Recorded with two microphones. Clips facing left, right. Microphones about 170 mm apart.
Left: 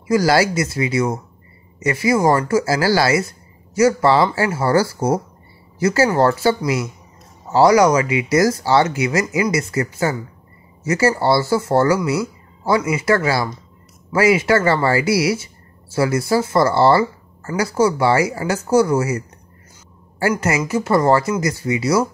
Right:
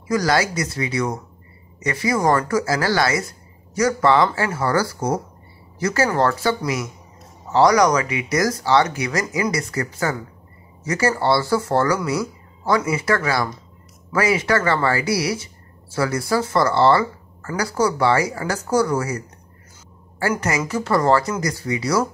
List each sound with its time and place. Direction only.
0.1 s speech: 30° left (ahead or behind)